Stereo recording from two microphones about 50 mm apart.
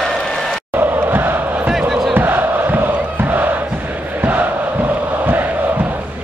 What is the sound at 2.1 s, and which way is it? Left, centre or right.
Crowd, right.